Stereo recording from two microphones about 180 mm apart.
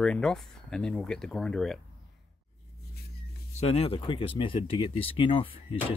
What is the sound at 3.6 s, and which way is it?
Speech, 35° left (ahead or behind).